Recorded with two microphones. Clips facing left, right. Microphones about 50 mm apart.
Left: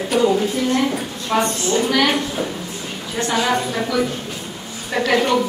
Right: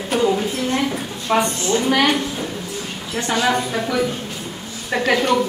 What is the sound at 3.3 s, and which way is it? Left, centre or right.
Speech, centre.